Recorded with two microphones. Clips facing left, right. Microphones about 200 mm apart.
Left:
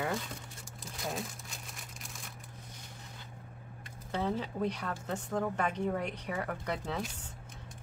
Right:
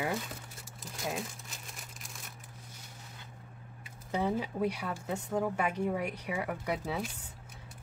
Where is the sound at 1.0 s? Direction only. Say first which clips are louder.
Right 1 dB; centre (ahead or behind).